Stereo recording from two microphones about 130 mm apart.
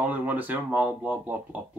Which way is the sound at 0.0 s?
10° right (ahead or behind).